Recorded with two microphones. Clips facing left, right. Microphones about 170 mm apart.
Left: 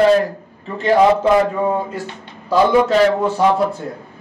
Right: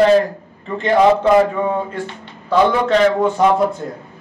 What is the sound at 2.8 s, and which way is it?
Speech, 5° left (ahead or behind).